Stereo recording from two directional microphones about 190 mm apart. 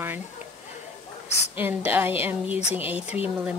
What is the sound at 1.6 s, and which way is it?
Speech, 10° right (ahead or behind).